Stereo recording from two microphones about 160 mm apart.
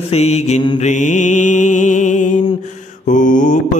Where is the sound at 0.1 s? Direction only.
40° left (ahead or behind).